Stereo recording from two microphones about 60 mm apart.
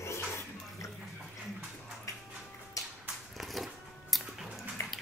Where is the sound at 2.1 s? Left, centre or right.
Left.